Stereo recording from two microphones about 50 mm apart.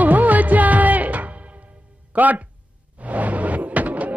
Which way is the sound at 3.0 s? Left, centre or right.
Right.